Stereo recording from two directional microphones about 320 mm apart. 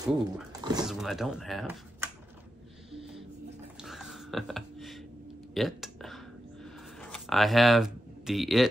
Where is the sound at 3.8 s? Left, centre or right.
Centre.